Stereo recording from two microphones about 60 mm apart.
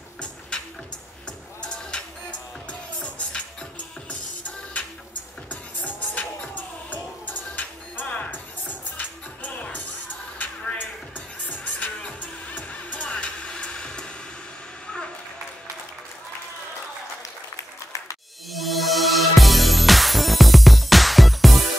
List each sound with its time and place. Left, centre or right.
0.5 s music: centre
5.9 s music: left
18.5 s music: centre